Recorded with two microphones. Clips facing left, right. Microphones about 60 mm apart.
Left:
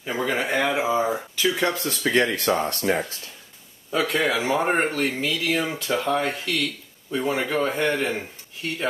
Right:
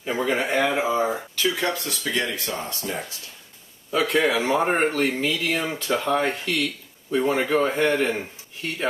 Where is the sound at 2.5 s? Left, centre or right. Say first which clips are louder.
Left 7 dB; left.